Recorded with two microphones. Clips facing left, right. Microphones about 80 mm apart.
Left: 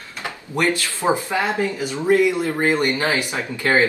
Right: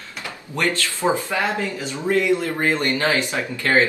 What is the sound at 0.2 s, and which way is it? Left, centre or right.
Speech, centre.